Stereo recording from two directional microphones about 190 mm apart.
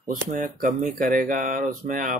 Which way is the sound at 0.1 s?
45° right (ahead or behind).